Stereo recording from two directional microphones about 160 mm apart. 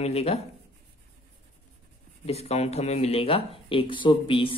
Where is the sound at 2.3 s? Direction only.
40° left (ahead or behind).